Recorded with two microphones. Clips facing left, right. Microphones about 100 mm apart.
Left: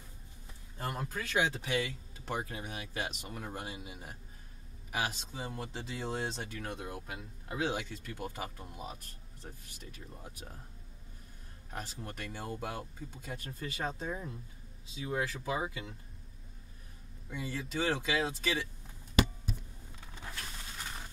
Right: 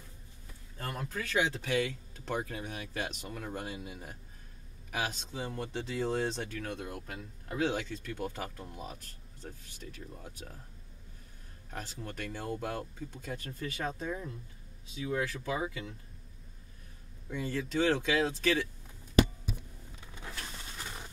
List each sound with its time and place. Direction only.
0.7 s speech: 20° left (ahead or behind)
1.5 s speech: 5° left (ahead or behind)
6.6 s speech: 15° left (ahead or behind)
11.7 s speech: 10° left (ahead or behind)
13.5 s speech: 25° left (ahead or behind)
14.1 s speech: 15° left (ahead or behind)
15.0 s speech: 30° left (ahead or behind)
17.3 s speech: 5° left (ahead or behind)